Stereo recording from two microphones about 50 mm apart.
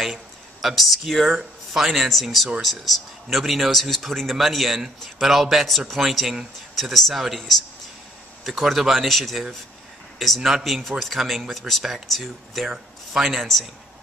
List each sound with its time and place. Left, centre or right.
0.1 s a man's voice: centre
12.6 s speech: centre
13.2 s a man's voice: centre